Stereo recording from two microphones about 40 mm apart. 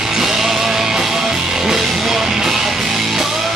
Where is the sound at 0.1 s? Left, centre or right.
Centre.